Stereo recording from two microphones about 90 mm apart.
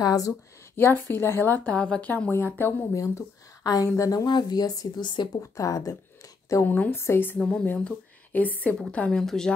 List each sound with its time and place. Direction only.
0.0 s speech: 40° left (ahead or behind)
1.0 s a woman's voice: 25° left (ahead or behind)
2.9 s speech: 40° left (ahead or behind)
4.3 s speech: 50° left (ahead or behind)
5.4 s speech: 40° left (ahead or behind)
6.6 s a woman's voice: 20° left (ahead or behind)
7.3 s a woman's voice: 15° left (ahead or behind)